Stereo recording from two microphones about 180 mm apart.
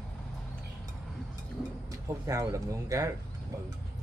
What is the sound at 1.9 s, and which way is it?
Speech, 15° right (ahead or behind).